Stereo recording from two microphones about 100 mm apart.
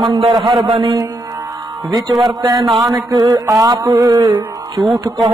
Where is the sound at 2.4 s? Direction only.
35° right (ahead or behind).